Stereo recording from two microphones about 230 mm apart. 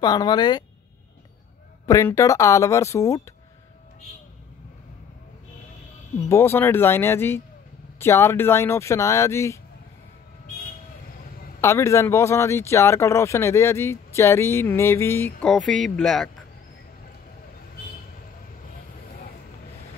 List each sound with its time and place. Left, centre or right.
0.0 s speech: centre
1.9 s speech: centre
6.2 s speech: centre
11.6 s speech: centre